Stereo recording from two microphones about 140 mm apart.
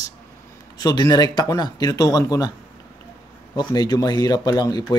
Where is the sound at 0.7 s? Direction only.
30° left (ahead or behind).